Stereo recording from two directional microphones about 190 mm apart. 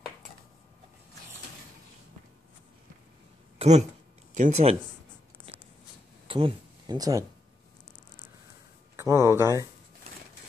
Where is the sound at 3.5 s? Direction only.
35° right (ahead or behind).